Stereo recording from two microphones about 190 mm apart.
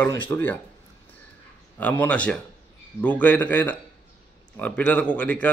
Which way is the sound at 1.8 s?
10° left (ahead or behind).